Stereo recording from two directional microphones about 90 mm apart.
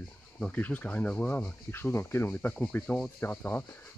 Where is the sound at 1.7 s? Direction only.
25° left (ahead or behind).